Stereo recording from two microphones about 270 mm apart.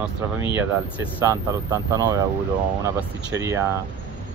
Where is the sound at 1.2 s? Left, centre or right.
Centre.